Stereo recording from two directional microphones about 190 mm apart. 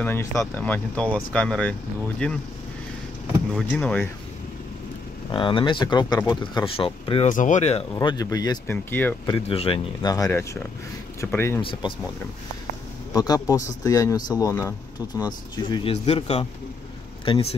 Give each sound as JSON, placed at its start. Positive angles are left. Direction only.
{"t": 0.0, "sound": "speech", "side_deg": 10}
{"t": 3.5, "sound": "speech", "side_deg": 5}
{"t": 5.3, "sound": "speech", "side_deg": 25}
{"t": 7.2, "sound": "speech", "side_deg": 40}
{"t": 7.9, "sound": "speech", "side_deg": 25}
{"t": 9.3, "sound": "speech", "side_deg": 30}
{"t": 10.1, "sound": "speech", "side_deg": 15}
{"t": 11.6, "sound": "speech", "side_deg": 25}
{"t": 13.1, "sound": "speech", "side_deg": 20}